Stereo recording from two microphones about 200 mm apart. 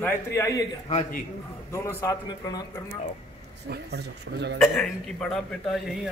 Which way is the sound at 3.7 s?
55° right (ahead or behind).